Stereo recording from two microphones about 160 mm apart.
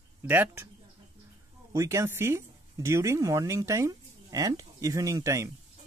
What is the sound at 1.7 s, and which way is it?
Speech, 20° right (ahead or behind).